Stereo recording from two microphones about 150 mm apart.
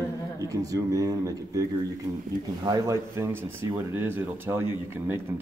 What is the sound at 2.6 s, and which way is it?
Speech, 20° right (ahead or behind).